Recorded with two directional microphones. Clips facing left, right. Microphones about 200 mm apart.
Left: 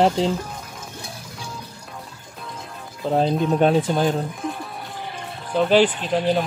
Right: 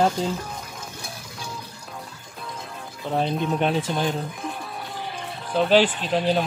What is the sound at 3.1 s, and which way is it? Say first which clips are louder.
Speech: left 4 dB; 35° left (ahead or behind).